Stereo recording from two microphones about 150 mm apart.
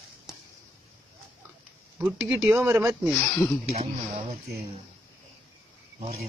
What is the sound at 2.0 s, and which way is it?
Speech, 10° right (ahead or behind).